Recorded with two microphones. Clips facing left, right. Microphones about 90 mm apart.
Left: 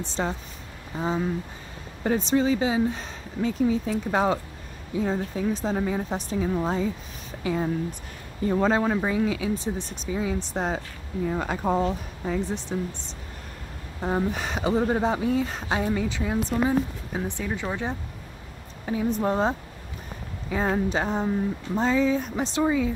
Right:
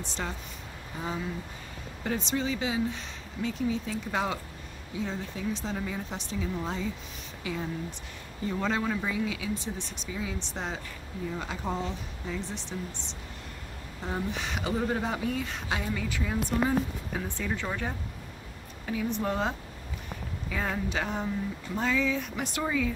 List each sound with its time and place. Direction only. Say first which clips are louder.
0.0 s speech: left 7 dB; 35° left (ahead or behind)
11.2 s speech: left 8 dB; 55° left (ahead or behind)
14.0 s speech: left 7 dB; 45° left (ahead or behind); by 17.9 s 20° left (ahead or behind)
18.9 s speech: left 5 dB; 35° left (ahead or behind)